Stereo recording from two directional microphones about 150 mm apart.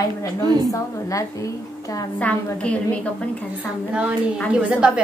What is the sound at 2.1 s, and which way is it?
Speech, 10° left (ahead or behind).